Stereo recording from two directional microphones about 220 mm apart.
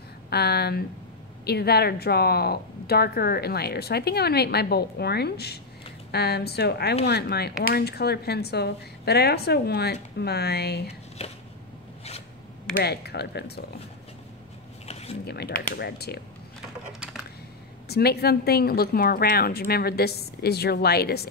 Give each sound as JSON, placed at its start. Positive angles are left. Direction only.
{"t": 0.3, "sound": "speech", "side_deg": 45}
{"t": 11.2, "sound": "shuffling cards", "side_deg": 25}
{"t": 12.8, "sound": "speech", "side_deg": 45}
{"t": 14.9, "sound": "a sound", "side_deg": 30}
{"t": 15.2, "sound": "speech", "side_deg": 45}
{"t": 17.8, "sound": "speech", "side_deg": 45}